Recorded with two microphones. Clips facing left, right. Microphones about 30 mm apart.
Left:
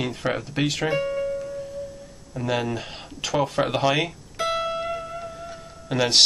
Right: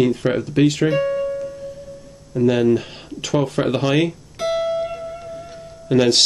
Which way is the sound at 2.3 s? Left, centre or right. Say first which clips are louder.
Right 10 dB; centre.